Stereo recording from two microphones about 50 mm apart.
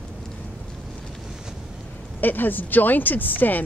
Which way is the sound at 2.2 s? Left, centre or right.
Left.